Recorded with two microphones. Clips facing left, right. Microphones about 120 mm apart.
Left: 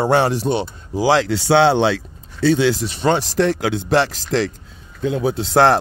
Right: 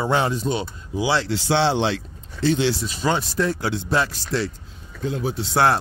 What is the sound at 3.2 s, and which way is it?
Speech, 90° left.